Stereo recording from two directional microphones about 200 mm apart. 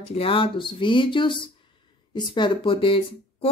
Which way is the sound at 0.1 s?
25° left (ahead or behind).